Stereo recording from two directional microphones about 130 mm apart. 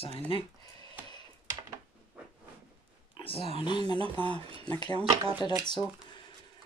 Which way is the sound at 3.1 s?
45° left (ahead or behind).